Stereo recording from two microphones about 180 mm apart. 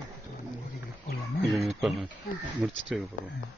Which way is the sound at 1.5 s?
Centre (ahead or behind).